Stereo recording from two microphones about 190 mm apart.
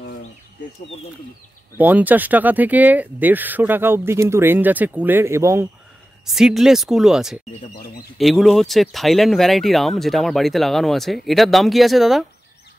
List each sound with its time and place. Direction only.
1.8 s speech: 10° right (ahead or behind)
6.2 s speech: centre (ahead or behind)
7.7 s speech: 55° left (ahead or behind)
8.2 s speech: centre (ahead or behind)